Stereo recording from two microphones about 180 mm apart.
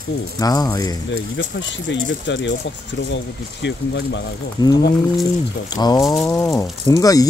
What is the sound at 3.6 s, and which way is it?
Speech, 80° left.